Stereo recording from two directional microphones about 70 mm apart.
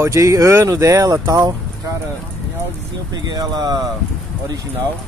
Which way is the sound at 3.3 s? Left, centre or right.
Right.